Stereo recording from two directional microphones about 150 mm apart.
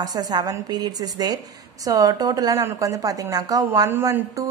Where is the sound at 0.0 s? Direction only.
25° right (ahead or behind).